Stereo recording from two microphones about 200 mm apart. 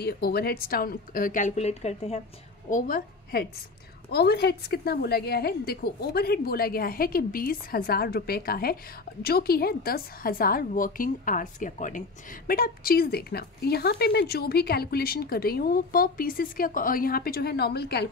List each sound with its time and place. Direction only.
0.0 s a woman's voice: 50° left (ahead or behind); by 2.2 s 35° left (ahead or behind)
2.7 s a woman's voice: 50° left (ahead or behind)